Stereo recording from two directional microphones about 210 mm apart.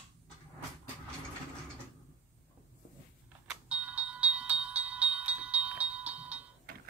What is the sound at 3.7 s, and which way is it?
Music, 5° right (ahead or behind).